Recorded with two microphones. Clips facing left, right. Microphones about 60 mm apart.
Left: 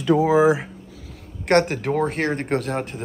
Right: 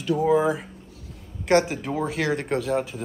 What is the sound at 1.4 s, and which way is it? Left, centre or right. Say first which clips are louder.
Speech: left 2 dB; left.